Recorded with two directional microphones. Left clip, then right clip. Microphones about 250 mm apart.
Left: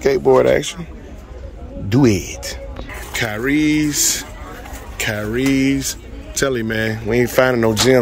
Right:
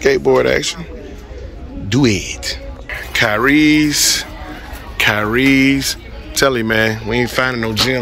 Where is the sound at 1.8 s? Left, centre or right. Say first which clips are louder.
Even; centre.